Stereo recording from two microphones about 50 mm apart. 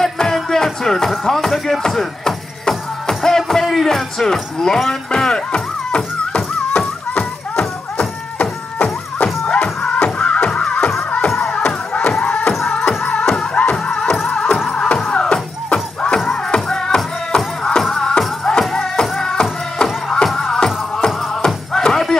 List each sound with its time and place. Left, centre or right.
0.0 s music: centre
3.6 s speech: centre
7.5 s music: centre